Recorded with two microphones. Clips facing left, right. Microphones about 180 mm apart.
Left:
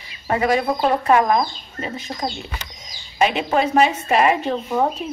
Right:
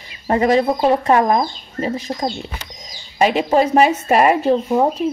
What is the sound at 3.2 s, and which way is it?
Speech, 40° right (ahead or behind).